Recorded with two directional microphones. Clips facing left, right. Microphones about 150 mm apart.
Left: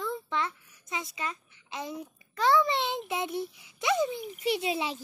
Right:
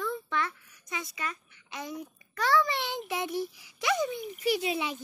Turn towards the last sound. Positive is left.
turn(degrees=30)  # may be behind; listen again after turning